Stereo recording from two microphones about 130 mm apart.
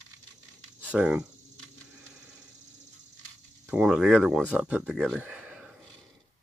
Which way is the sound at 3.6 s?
10° right (ahead or behind).